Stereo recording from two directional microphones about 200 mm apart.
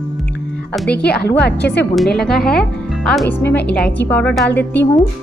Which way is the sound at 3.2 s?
10° left (ahead or behind).